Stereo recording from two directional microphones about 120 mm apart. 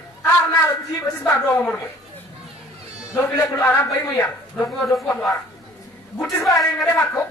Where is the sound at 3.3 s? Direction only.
20° left (ahead or behind).